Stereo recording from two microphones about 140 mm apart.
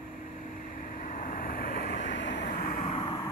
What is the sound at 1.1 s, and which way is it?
Vehicle, 75° left (ahead or behind).